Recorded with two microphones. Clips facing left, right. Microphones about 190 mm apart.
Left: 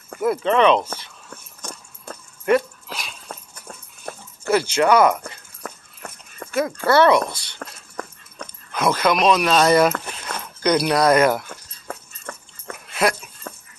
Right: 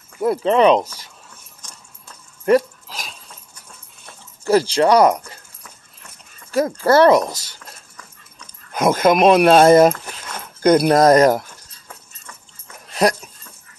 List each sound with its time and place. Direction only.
0.2 s speech: 35° right (ahead or behind)
1.6 s a sound: 65° left (ahead or behind)
2.4 s dog: 40° right (ahead or behind)
3.3 s dog: 60° left (ahead or behind)
4.5 s speech: 35° right (ahead or behind)
5.6 s a sound: 60° left (ahead or behind)
6.5 s speech: 40° right (ahead or behind)
7.5 s dog: 65° left (ahead or behind)
8.7 s speech: 45° right (ahead or behind)
11.4 s dog: 60° left (ahead or behind)
12.8 s dog: 40° right (ahead or behind)